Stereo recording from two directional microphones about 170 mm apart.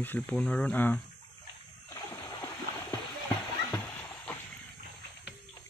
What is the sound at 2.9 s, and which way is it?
Horse, 20° left (ahead or behind).